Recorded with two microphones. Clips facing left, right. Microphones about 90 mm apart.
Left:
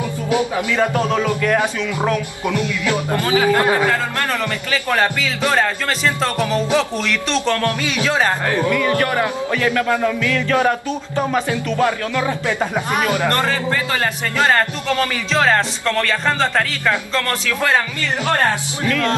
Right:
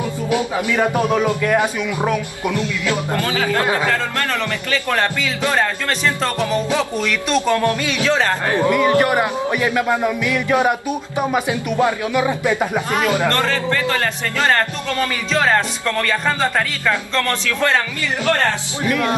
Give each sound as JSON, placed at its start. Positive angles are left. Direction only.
{"t": 0.6, "sound": "speech", "side_deg": -20}
{"t": 2.6, "sound": "speech", "side_deg": 20}
{"t": 4.9, "sound": "speech", "side_deg": 15}
{"t": 6.8, "sound": "speech", "side_deg": -5}
{"t": 8.0, "sound": "speech", "side_deg": 15}
{"t": 8.6, "sound": "speech", "side_deg": -20}
{"t": 13.3, "sound": "speech", "side_deg": 15}
{"t": 15.3, "sound": "speech", "side_deg": 0}
{"t": 18.9, "sound": "music", "side_deg": -20}